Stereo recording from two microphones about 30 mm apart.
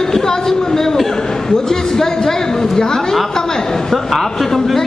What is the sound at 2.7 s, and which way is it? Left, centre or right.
Speech, left.